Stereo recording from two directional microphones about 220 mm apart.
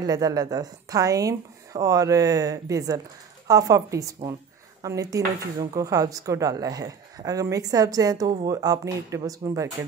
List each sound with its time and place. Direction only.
0.0 s speech: 15° right (ahead or behind)